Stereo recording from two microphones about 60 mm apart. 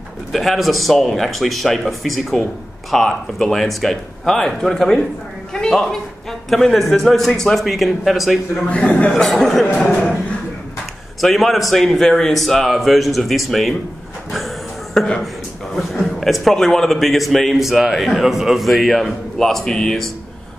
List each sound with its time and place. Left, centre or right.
0.3 s a man's voice: centre
8.6 s a man's voice: left
9.2 s a man's voice: centre
11.1 s a man's voice: centre
15.0 s a man's voice: centre